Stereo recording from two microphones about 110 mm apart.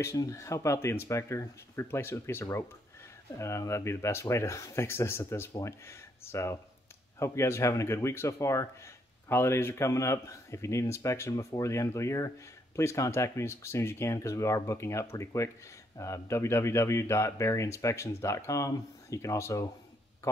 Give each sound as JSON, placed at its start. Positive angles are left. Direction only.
{"t": 0.0, "sound": "speech", "side_deg": 30}